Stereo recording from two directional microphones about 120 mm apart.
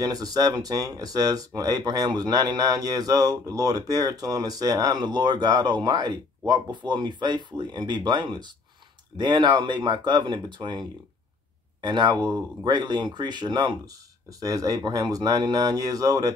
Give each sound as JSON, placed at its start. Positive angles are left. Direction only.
{"t": 0.0, "sound": "speech", "side_deg": -30}